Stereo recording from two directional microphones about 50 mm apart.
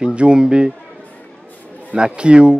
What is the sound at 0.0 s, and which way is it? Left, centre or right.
Speech, right.